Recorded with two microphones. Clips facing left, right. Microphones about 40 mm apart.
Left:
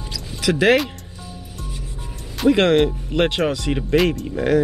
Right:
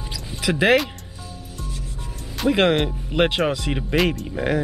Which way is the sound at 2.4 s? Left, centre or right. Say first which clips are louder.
Left 3 dB; centre.